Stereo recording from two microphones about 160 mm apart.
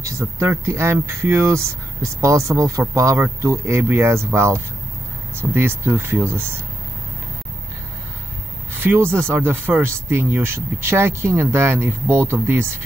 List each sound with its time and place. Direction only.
0.0 s speech: 20° right (ahead or behind)
8.8 s speech: 15° right (ahead or behind)